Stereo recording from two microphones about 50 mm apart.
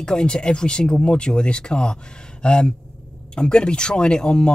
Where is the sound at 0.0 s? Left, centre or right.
Centre.